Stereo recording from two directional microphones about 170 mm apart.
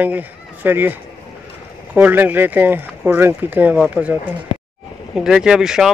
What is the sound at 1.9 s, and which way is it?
Speech, 10° right (ahead or behind).